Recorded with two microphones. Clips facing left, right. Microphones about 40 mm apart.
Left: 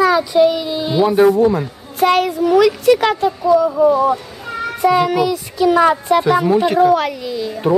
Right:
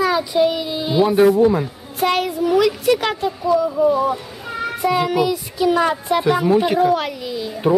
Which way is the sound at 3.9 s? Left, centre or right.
Centre.